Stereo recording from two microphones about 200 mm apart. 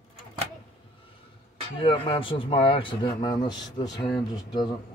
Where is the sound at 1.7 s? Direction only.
25° left (ahead or behind).